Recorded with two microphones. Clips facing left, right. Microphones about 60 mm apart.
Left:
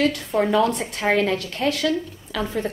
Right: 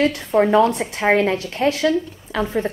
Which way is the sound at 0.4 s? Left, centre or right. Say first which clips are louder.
Right 4 dB; right.